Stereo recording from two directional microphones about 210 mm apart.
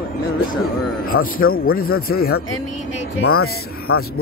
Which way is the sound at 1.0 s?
45° left (ahead or behind).